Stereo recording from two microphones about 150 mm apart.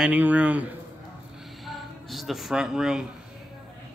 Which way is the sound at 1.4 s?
Centre (ahead or behind).